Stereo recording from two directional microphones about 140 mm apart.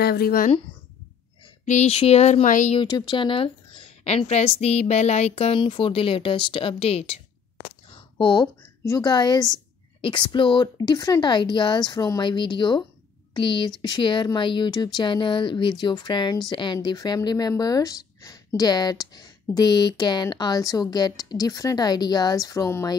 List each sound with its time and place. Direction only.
0.1 s speech: 90° left
1.7 s speech: 50° left (ahead or behind)
2.9 s a woman's voice: 30° left (ahead or behind); by 7.2 s 45° left (ahead or behind)
7.9 s a sound: 35° left (ahead or behind)
8.8 s a woman's voice: 25° left (ahead or behind)